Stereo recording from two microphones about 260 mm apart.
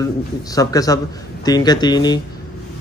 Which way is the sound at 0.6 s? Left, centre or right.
Centre.